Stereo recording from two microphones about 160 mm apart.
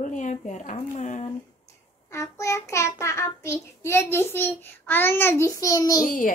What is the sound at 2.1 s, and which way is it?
Child singing, 20° left (ahead or behind).